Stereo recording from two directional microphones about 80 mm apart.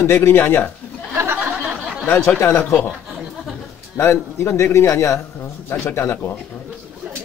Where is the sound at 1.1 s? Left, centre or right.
Right.